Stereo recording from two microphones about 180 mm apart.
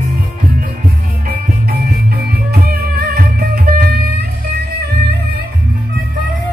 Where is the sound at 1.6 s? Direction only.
55° right (ahead or behind).